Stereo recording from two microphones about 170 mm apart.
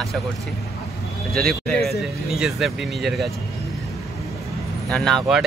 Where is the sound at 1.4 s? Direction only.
5° left (ahead or behind).